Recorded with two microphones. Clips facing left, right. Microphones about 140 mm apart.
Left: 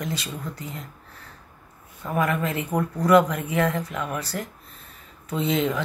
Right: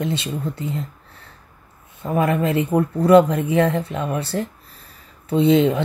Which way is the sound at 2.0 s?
30° right (ahead or behind).